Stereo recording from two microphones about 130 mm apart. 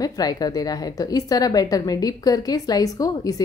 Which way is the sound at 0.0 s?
30° left (ahead or behind).